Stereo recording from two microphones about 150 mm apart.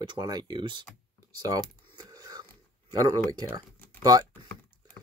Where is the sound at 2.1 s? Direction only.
25° right (ahead or behind).